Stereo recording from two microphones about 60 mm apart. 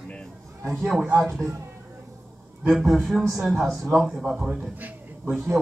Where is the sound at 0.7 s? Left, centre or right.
Centre.